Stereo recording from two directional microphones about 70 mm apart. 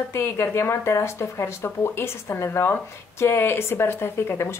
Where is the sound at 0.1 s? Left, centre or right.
Left.